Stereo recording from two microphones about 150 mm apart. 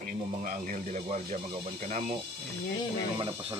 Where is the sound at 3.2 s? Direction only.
35° right (ahead or behind).